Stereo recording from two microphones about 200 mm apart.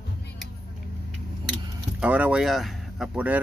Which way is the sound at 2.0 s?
5° right (ahead or behind).